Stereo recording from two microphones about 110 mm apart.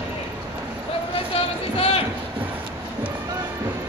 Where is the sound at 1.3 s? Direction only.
60° left (ahead or behind).